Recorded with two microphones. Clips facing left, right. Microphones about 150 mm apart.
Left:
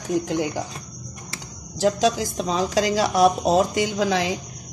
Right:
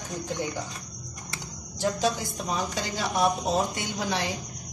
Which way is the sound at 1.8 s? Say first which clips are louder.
Left 6 dB; 90° left.